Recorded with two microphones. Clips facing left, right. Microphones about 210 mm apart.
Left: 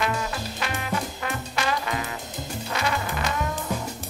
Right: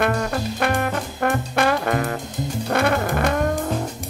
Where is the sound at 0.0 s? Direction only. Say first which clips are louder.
Right 6 dB; 55° right (ahead or behind).